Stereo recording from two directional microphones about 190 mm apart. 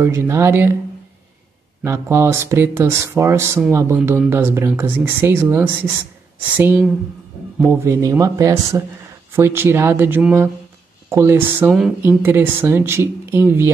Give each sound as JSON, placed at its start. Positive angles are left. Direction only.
{"t": 0.0, "sound": "speech", "side_deg": -15}
{"t": 1.8, "sound": "speech", "side_deg": -15}